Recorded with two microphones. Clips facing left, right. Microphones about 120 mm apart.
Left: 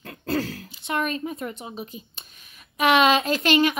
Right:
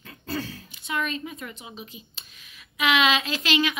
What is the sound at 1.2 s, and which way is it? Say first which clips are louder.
Speech: left 6 dB; 40° left (ahead or behind).